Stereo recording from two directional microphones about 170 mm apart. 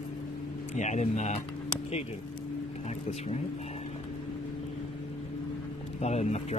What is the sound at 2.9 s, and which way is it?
Speech, 40° left (ahead or behind).